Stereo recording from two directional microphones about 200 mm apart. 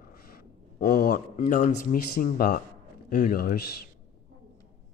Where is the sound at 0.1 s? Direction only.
50° left (ahead or behind).